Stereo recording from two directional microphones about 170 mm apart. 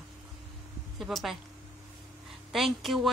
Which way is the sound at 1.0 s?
Centre (ahead or behind).